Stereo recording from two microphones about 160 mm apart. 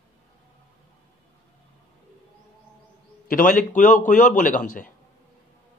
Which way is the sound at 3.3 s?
60° left (ahead or behind).